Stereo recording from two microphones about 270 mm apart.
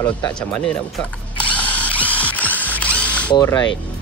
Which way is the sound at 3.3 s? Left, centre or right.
Centre.